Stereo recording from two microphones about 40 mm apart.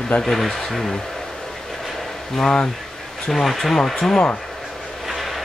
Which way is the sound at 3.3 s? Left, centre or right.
Centre.